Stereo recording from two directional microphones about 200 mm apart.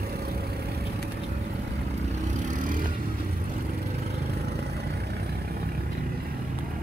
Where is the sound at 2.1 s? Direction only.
40° right (ahead or behind).